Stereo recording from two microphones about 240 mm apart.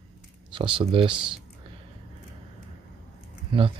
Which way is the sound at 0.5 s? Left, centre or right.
Right.